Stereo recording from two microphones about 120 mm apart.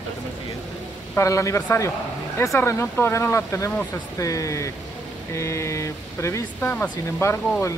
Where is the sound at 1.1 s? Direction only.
25° left (ahead or behind).